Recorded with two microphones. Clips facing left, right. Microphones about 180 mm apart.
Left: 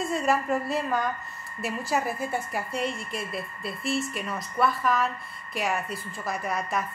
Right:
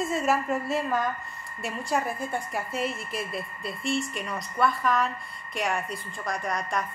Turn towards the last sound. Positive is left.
turn(degrees=5)  # may be behind; listen again after turning